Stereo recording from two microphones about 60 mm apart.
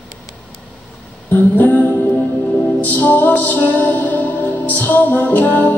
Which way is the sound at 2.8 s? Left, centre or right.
Left.